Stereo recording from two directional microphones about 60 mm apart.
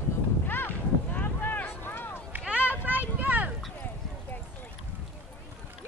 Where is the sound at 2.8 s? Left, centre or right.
Right.